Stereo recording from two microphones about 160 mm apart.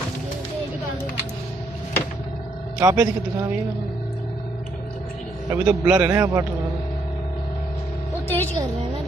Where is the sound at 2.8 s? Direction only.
20° right (ahead or behind).